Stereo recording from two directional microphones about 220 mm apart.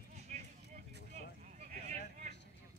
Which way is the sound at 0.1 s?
30° right (ahead or behind).